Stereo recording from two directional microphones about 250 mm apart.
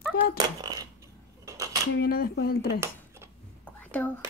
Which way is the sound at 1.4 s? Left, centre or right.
Centre.